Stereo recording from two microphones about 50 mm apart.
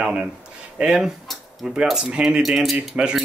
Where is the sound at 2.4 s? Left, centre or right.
Centre.